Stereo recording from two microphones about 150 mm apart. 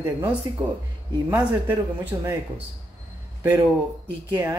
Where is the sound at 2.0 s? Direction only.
15° right (ahead or behind).